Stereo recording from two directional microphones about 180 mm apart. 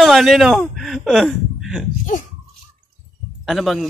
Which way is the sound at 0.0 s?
Centre (ahead or behind).